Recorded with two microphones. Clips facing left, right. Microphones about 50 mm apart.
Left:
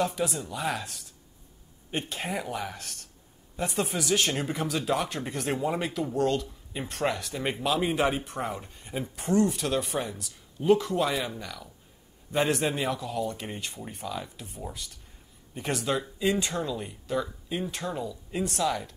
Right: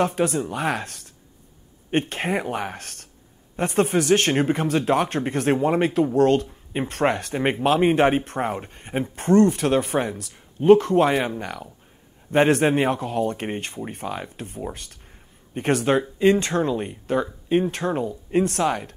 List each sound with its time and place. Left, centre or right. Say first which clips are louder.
0.0 s speech: right 7 dB; right